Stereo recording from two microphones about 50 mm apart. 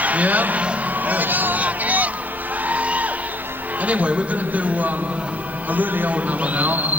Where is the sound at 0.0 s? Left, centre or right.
Right.